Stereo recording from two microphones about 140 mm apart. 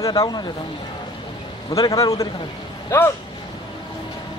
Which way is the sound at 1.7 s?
25° left (ahead or behind).